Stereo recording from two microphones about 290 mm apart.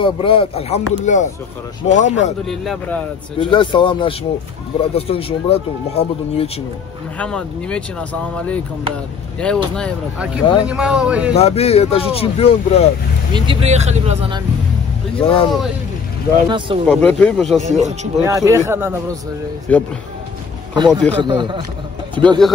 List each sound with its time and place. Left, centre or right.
0.0 s speech: centre
2.4 s speech: centre
3.3 s speech: centre
7.2 s speech: centre
11.3 s speech: left
13.3 s speech: centre
15.1 s speech: centre
16.4 s speech: centre
16.8 s speech: centre
17.6 s speech: right
18.2 s speech: centre
19.7 s speech: centre
20.7 s speech: centre